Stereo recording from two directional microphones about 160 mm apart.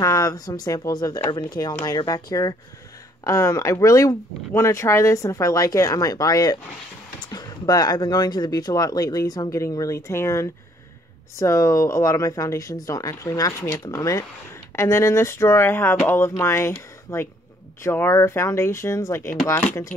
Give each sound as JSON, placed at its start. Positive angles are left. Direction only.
{"t": 0.0, "sound": "speech", "side_deg": 20}